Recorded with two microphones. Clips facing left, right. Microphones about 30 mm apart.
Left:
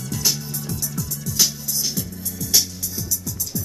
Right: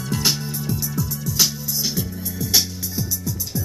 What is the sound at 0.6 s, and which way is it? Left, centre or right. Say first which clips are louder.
Music: right 4 dB; centre.